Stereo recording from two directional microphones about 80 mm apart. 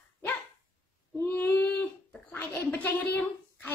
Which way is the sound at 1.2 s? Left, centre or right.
Left.